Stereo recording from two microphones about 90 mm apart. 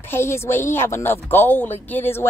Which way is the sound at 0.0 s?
25° left (ahead or behind).